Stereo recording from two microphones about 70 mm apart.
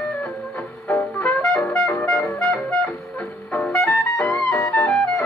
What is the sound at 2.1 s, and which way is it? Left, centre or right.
Music, left.